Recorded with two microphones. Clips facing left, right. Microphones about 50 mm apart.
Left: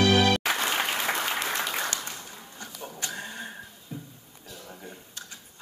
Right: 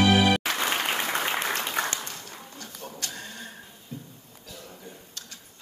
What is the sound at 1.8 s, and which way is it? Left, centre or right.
Applause, right.